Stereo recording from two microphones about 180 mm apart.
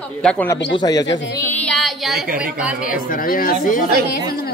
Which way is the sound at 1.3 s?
10° left (ahead or behind).